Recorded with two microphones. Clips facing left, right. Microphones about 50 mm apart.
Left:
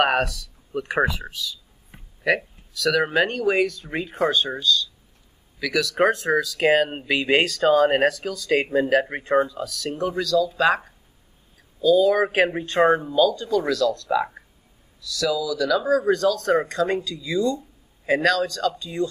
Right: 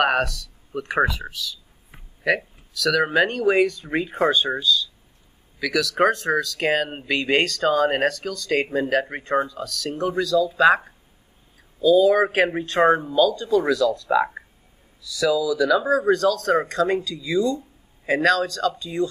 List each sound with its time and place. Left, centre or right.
0.0 s speech: centre
2.2 s speech: centre
13.6 s speech: centre